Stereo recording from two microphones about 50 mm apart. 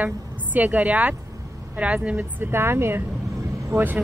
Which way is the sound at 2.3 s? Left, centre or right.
Right.